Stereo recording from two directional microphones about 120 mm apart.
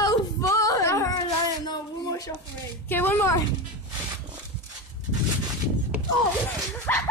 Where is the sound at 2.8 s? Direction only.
15° left (ahead or behind).